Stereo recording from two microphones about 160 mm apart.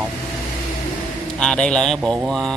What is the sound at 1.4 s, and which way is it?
Speech, 5° left (ahead or behind).